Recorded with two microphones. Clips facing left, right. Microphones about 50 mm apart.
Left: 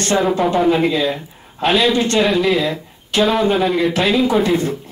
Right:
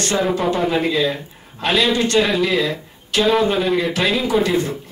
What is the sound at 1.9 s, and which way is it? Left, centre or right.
Speech, left.